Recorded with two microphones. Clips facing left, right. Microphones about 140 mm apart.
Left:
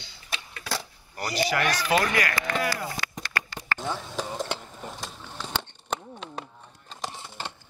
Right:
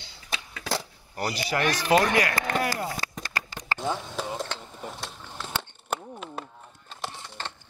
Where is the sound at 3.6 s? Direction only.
20° right (ahead or behind).